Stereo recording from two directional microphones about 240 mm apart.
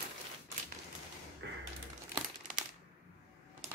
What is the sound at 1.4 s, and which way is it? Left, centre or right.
Typewriter, right.